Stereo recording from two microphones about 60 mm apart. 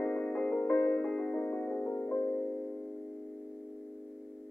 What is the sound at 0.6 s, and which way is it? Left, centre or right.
Music, left.